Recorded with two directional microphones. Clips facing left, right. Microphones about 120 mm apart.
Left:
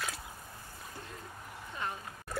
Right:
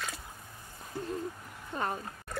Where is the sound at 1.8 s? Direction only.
45° right (ahead or behind).